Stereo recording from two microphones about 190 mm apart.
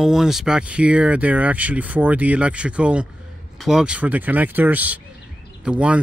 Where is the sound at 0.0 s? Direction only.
Centre (ahead or behind).